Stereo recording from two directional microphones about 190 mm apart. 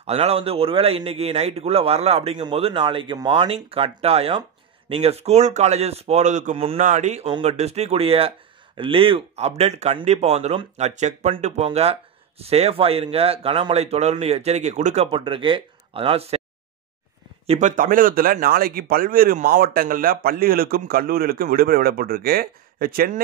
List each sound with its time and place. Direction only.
0.0 s speech: 30° right (ahead or behind)
17.5 s speech: 40° right (ahead or behind)